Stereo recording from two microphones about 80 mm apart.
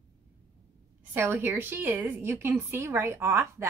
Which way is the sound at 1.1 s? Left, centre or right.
Right.